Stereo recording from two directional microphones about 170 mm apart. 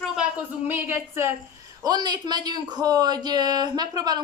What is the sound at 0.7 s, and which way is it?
Speech, 15° right (ahead or behind).